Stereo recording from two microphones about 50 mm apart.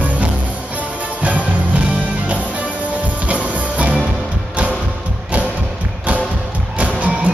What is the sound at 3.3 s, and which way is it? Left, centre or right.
Music, right.